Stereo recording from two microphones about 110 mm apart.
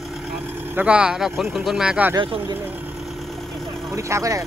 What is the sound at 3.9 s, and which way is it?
Speech, 25° right (ahead or behind).